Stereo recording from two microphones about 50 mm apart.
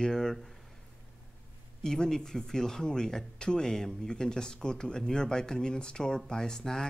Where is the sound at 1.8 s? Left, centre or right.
Centre.